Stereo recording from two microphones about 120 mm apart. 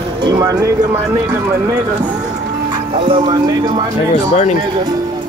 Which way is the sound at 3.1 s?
40° right (ahead or behind).